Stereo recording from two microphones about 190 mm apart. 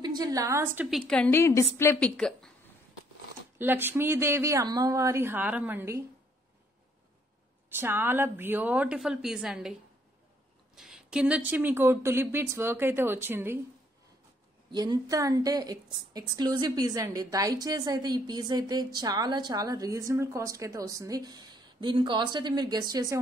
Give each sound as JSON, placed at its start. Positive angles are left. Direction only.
{"t": 0.0, "sound": "a woman's voice", "side_deg": -20}
{"t": 0.8, "sound": "speech", "side_deg": 0}
{"t": 3.5, "sound": "speech", "side_deg": -10}
{"t": 7.7, "sound": "speech", "side_deg": -10}
{"t": 10.8, "sound": "speech", "side_deg": -5}
{"t": 14.7, "sound": "a woman's voice", "side_deg": -20}